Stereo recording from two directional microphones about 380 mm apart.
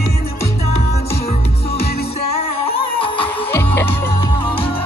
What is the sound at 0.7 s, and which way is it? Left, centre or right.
Music, centre.